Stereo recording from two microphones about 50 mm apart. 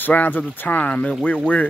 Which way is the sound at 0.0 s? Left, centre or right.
Left.